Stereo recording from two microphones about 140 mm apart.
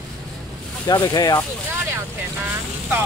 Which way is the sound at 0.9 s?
25° left (ahead or behind).